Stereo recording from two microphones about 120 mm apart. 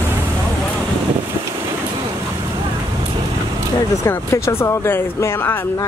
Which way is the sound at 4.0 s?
20° left (ahead or behind).